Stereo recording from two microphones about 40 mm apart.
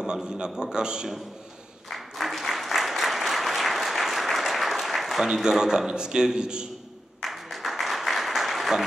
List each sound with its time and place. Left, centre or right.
0.0 s a man's voice: centre
1.9 s applause: centre
5.2 s a man's voice: centre
7.2 s applause: centre